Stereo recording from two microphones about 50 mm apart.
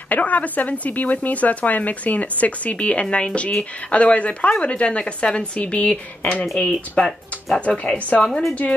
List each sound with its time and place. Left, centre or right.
0.1 s speech: left; by 7.2 s centre
7.6 s speech: left
8.2 s speech: centre